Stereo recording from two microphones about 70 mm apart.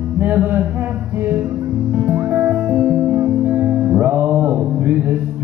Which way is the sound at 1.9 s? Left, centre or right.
Right.